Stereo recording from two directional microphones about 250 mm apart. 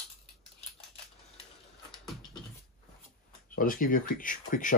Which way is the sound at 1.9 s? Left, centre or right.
Centre.